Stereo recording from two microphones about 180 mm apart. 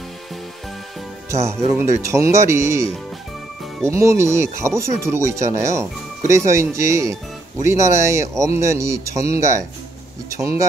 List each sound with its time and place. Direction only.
1.3 s speech: 15° right (ahead or behind)
3.9 s speech: 15° right (ahead or behind)